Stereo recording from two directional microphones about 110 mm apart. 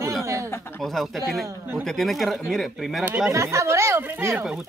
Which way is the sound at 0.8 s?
Centre (ahead or behind).